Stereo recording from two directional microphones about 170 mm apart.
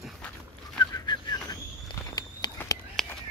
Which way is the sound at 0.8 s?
20° left (ahead or behind).